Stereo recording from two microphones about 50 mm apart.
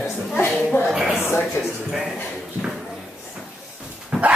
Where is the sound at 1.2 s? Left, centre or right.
Left.